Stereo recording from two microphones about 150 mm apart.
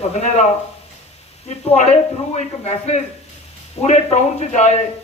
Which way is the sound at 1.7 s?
50° left (ahead or behind).